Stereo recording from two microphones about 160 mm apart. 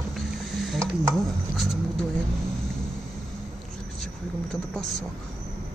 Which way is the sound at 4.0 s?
5° left (ahead or behind).